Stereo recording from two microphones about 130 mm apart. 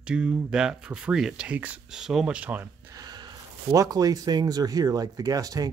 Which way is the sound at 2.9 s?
30° right (ahead or behind).